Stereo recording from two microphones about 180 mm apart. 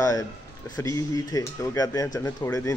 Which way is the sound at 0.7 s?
20° left (ahead or behind).